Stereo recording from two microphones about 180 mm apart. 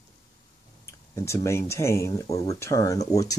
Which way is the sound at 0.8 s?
15° left (ahead or behind).